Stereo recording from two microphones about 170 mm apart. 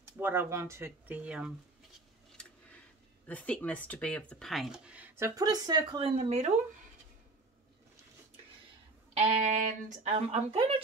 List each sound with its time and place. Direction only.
0.2 s speech: 15° right (ahead or behind)
3.3 s speech: 10° left (ahead or behind); by 6.5 s 40° right (ahead or behind)
9.1 s speech: 40° right (ahead or behind)